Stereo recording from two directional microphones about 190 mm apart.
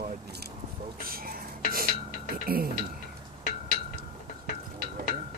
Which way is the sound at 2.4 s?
50° right (ahead or behind).